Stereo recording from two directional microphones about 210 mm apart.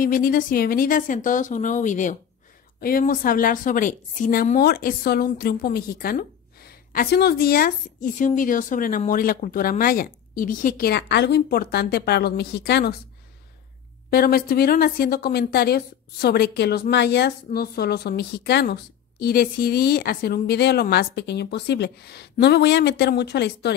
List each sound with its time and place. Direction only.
0.0 s speech: 40° left (ahead or behind)
14.1 s speech: 45° left (ahead or behind)